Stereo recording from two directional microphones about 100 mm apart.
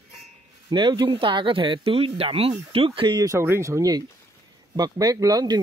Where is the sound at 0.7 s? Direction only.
50° right (ahead or behind).